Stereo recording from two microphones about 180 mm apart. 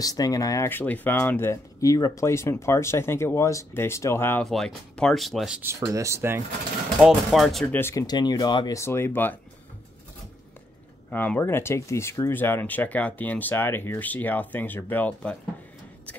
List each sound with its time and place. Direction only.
0.0 s speech: 20° left (ahead or behind)
4.5 s speech: centre (ahead or behind)
5.6 s speech: 15° right (ahead or behind)
7.0 s speech: centre (ahead or behind)
7.6 s speech: 15° left (ahead or behind)
11.1 s speech: 10° left (ahead or behind)